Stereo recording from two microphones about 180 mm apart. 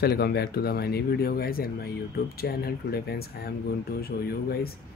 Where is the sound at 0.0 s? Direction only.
60° left (ahead or behind).